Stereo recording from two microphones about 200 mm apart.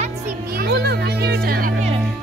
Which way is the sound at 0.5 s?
55° right (ahead or behind).